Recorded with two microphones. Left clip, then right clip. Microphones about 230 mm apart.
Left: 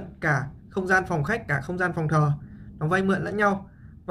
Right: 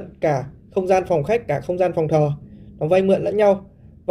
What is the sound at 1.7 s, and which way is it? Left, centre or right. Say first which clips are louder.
Speech: right 8 dB; left.